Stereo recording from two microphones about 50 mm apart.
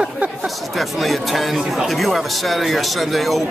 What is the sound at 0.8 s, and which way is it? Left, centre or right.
Speech, centre.